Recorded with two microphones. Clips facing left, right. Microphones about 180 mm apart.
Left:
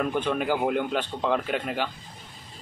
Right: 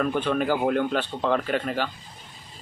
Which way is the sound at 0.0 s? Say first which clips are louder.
Right 2 dB; 10° left (ahead or behind).